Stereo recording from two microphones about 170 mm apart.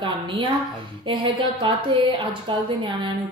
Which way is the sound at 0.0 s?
30° right (ahead or behind).